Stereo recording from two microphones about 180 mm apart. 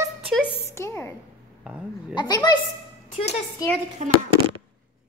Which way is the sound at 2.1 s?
25° left (ahead or behind).